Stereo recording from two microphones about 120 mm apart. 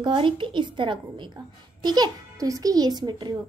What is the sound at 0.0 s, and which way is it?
A woman's voice, 45° right (ahead or behind).